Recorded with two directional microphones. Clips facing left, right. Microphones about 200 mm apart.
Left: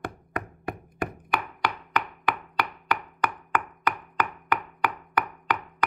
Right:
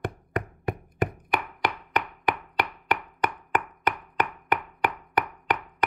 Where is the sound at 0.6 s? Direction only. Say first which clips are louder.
Right 4 dB; 20° right (ahead or behind).